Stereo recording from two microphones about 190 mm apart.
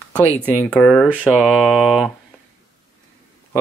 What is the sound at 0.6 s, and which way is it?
Mantra, 5° left (ahead or behind).